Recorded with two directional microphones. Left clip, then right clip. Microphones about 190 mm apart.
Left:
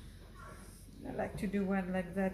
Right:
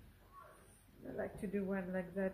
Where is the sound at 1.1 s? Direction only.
30° right (ahead or behind).